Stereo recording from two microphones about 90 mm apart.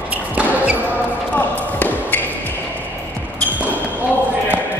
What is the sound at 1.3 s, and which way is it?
Basketball bounce, 20° left (ahead or behind).